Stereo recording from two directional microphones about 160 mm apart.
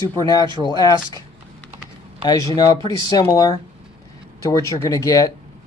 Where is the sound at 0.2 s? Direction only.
25° left (ahead or behind).